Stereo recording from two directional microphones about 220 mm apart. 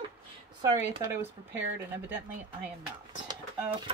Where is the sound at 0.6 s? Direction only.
15° right (ahead or behind).